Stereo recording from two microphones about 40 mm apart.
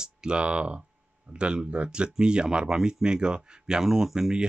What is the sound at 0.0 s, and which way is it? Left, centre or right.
Speech, right.